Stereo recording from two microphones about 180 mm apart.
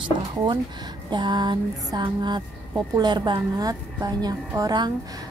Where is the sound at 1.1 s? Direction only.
25° right (ahead or behind).